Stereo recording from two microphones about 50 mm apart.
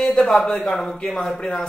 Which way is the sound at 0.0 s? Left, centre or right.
Centre.